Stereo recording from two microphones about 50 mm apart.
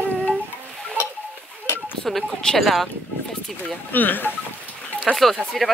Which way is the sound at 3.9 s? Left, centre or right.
Left.